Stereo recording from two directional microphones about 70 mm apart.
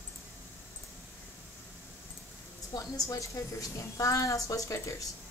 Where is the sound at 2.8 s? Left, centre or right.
Left.